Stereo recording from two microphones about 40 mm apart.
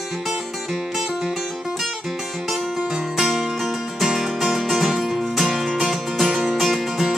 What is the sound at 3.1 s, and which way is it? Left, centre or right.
Music, centre.